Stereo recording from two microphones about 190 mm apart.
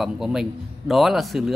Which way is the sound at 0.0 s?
5° right (ahead or behind).